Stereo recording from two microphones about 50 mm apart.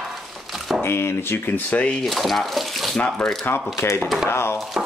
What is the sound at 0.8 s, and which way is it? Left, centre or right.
Speech, left.